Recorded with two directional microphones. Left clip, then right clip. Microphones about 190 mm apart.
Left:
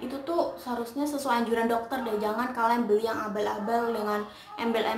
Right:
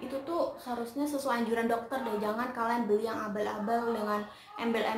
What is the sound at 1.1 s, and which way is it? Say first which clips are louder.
A woman's voice: left 4 dB; 5° left (ahead or behind).